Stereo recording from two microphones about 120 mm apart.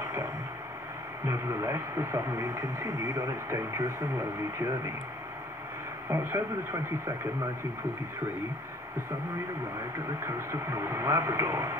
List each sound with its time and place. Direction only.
1.2 s speech: 25° right (ahead or behind)
6.0 s speech: 20° right (ahead or behind)
10.2 s speech: 20° right (ahead or behind)